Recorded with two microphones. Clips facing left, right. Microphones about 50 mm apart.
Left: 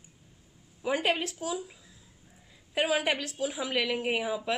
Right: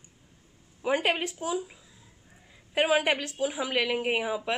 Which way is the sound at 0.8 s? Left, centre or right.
Centre.